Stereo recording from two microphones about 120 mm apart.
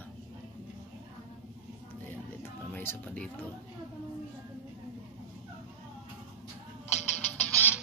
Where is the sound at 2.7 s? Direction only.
15° left (ahead or behind).